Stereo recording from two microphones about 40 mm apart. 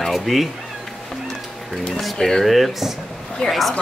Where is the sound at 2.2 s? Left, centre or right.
Centre.